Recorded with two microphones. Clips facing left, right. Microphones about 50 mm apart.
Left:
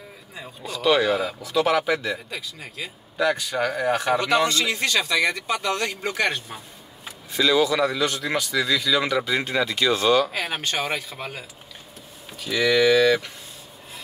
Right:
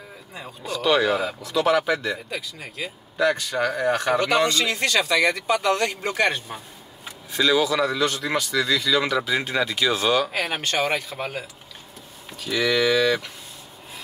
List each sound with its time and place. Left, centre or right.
0.6 s speech: centre